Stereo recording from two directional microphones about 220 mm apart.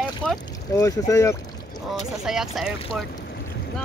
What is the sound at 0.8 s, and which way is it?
Speech, 15° left (ahead or behind).